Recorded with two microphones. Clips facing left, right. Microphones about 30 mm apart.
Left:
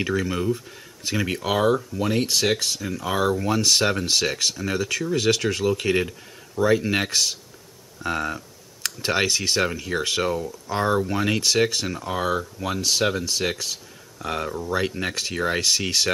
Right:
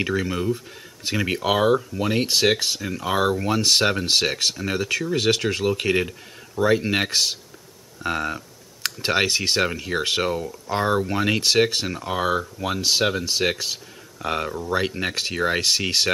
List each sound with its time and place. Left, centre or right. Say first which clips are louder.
0.3 s speech: even; centre